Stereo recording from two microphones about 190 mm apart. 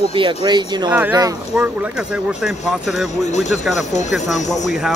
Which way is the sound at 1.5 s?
5° right (ahead or behind).